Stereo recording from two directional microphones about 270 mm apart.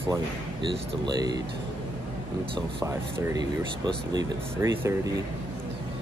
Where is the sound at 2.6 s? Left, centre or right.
Centre.